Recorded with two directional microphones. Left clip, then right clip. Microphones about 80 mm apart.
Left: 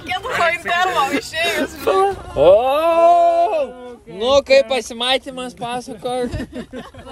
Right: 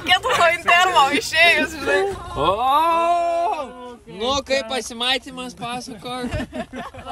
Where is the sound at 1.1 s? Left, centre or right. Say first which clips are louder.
Right 4 dB; centre.